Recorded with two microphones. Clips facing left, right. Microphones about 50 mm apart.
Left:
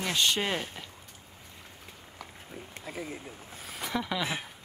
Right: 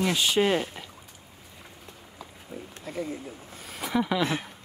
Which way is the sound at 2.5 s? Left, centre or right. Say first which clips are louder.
Right 5 dB; left.